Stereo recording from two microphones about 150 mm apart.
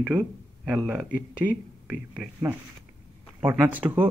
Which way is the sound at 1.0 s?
75° left (ahead or behind).